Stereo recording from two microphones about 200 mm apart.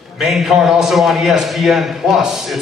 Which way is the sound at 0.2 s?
Centre (ahead or behind).